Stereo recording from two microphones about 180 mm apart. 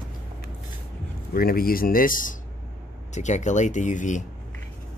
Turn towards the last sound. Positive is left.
turn(degrees=45)  # may be behind; listen again after turning